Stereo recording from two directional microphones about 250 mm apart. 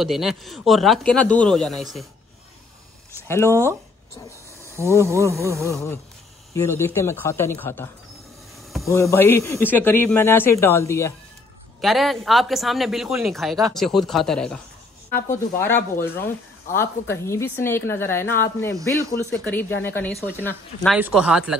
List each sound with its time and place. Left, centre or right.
0.0 s speech: centre
3.3 s speech: centre
5.0 s speech: centre
5.6 s speech: centre
11.8 s speech: centre